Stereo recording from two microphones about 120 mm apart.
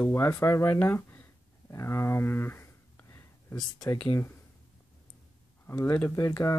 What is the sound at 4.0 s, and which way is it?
Speech, 15° left (ahead or behind).